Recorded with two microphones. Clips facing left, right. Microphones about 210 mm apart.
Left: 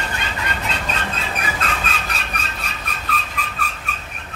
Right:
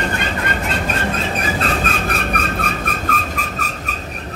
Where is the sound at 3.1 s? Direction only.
45° right (ahead or behind).